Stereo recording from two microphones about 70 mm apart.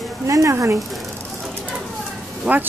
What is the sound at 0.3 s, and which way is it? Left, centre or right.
Speech, right.